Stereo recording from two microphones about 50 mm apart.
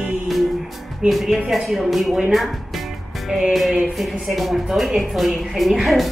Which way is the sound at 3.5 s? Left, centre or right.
Centre.